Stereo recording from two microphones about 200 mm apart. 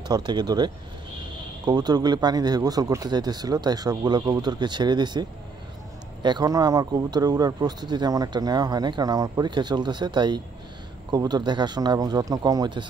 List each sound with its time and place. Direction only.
0.1 s speech: 20° right (ahead or behind)
1.7 s speech: 20° right (ahead or behind)
6.2 s speech: 20° right (ahead or behind)